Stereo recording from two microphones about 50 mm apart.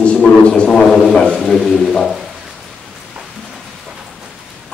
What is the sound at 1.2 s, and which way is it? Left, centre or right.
Speech, centre.